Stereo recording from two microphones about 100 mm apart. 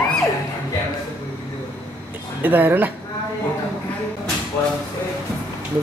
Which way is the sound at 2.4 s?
20° right (ahead or behind).